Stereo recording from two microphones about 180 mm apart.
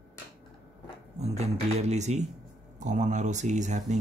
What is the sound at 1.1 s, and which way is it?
Speech, 40° right (ahead or behind).